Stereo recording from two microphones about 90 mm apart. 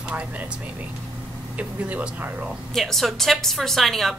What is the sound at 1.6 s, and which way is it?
Speech, 15° right (ahead or behind).